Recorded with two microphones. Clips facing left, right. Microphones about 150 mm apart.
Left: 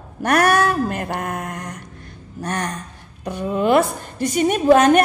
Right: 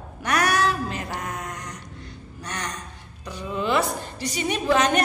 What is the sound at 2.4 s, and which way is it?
A woman's voice, 50° left (ahead or behind).